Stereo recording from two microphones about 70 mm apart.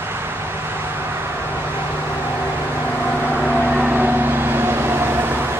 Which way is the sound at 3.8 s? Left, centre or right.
Right.